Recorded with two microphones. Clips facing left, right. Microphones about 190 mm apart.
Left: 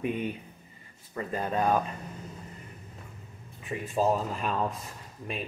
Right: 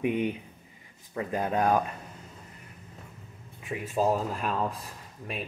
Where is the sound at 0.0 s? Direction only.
15° right (ahead or behind).